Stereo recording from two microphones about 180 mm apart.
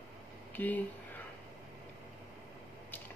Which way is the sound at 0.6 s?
10° left (ahead or behind).